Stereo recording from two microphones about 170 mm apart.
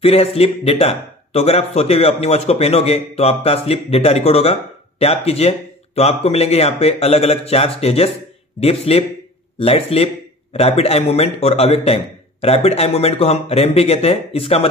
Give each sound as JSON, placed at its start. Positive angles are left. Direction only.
{"t": 0.0, "sound": "a man's voice", "side_deg": 35}